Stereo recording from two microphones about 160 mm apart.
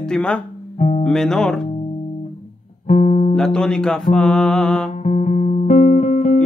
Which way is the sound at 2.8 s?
50° left (ahead or behind).